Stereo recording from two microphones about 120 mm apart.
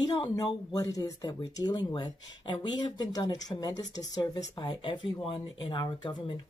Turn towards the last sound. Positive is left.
turn(degrees=35)  # may be behind; listen again after turning